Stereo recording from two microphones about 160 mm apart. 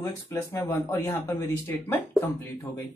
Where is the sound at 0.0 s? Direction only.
20° left (ahead or behind).